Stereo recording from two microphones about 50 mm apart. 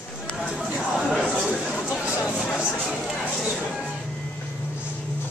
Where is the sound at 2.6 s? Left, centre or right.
Left.